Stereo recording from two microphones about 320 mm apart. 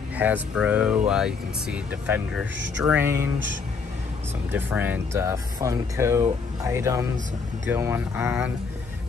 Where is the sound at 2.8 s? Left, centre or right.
Centre.